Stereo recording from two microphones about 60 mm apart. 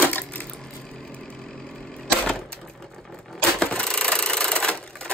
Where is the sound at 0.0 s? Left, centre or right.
Left.